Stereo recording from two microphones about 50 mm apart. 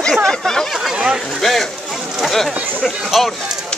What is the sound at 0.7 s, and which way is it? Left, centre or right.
Speech, centre.